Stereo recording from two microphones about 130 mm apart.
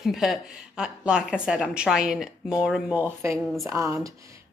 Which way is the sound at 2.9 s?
20° right (ahead or behind).